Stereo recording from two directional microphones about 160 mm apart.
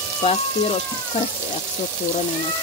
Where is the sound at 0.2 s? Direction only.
40° left (ahead or behind).